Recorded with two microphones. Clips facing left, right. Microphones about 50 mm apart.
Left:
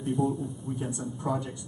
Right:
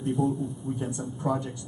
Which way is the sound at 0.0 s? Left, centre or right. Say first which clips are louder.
Right 1 dB; centre.